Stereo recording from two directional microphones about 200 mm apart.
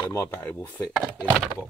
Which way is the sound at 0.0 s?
10° left (ahead or behind).